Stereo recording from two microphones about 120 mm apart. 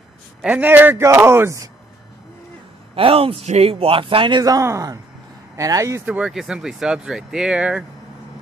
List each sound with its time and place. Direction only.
0.4 s a man's voice: 15° right (ahead or behind)
3.0 s a man's voice: 50° right (ahead or behind); by 6.0 s 25° right (ahead or behind)
6.0 s speech: 10° right (ahead or behind)